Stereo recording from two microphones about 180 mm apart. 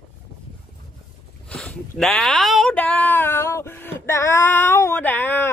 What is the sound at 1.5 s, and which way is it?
Speech, 5° left (ahead or behind).